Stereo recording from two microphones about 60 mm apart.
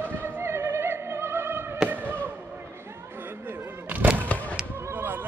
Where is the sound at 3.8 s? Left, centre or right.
Right.